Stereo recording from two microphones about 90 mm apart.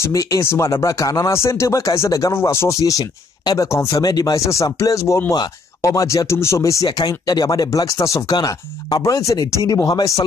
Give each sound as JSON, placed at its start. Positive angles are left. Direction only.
{"t": 0.0, "sound": "speech", "side_deg": 40}
{"t": 8.4, "sound": "speech", "side_deg": 50}
{"t": 9.0, "sound": "speech", "side_deg": 35}